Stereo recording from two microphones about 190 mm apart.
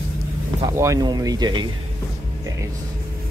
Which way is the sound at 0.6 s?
15° right (ahead or behind).